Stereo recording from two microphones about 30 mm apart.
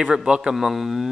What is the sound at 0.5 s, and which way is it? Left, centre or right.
Speech, centre.